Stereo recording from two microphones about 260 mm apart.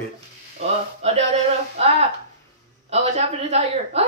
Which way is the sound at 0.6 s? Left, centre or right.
Right.